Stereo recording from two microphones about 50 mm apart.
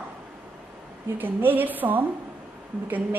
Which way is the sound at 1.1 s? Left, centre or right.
Right.